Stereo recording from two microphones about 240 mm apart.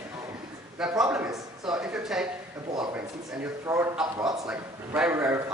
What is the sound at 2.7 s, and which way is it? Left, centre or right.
A man's voice, centre.